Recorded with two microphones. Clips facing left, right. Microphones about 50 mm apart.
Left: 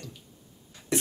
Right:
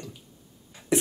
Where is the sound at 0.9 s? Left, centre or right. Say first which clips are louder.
Right 4 dB; centre.